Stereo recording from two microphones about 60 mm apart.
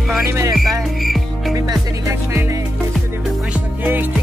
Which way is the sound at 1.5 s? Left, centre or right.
Right.